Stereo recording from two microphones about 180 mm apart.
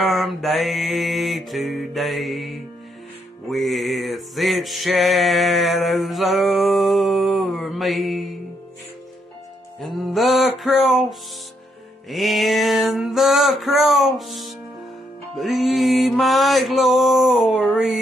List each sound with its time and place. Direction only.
0.0 s music: centre (ahead or behind)
9.8 s music: centre (ahead or behind)